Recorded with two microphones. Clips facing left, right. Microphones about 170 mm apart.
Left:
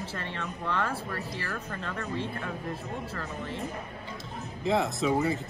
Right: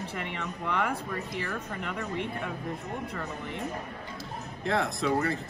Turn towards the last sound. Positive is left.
turn(degrees=0)  # may be behind; listen again after turning